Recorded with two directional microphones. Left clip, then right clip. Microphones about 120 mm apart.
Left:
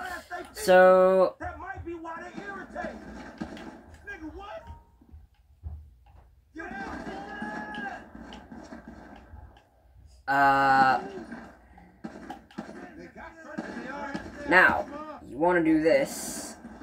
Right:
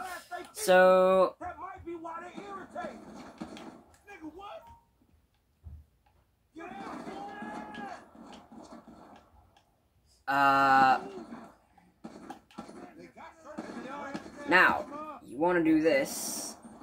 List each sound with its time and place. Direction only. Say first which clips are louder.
0.7 s speech: left 4 dB; 30° right (ahead or behind)
2.3 s vehicle: left 3 dB; centre (ahead or behind)
6.8 s livestock: left 2 dB; centre (ahead or behind)
10.2 s a sound: left 3 dB; 30° right (ahead or behind)
14.5 s speech: left 3 dB; 30° right (ahead or behind)